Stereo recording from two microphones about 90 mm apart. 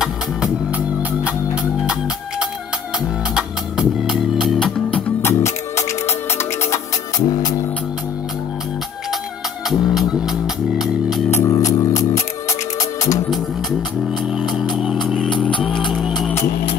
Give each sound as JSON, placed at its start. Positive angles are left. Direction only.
{"t": 0.7, "sound": "music", "side_deg": -15}
{"t": 3.3, "sound": "music", "side_deg": -5}
{"t": 5.2, "sound": "music", "side_deg": 30}
{"t": 7.2, "sound": "music", "side_deg": 45}
{"t": 9.7, "sound": "music", "side_deg": -5}
{"t": 11.2, "sound": "music", "side_deg": 30}
{"t": 11.5, "sound": "music", "side_deg": 40}
{"t": 14.3, "sound": "music", "side_deg": -5}